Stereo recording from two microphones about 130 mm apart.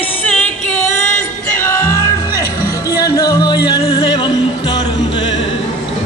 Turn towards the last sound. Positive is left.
turn(degrees=40)  # may be behind; listen again after turning